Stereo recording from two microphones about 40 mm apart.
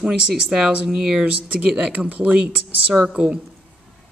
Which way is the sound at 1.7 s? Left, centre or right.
Right.